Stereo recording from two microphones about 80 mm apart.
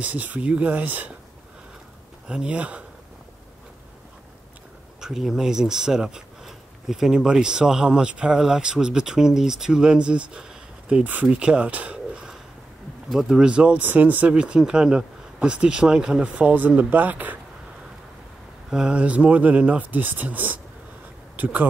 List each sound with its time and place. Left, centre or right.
0.0 s speech: centre
2.2 s speech: centre
5.0 s speech: centre; by 17.4 s right
18.7 s speech: centre